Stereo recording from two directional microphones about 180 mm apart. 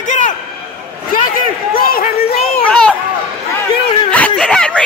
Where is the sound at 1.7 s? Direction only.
55° left (ahead or behind).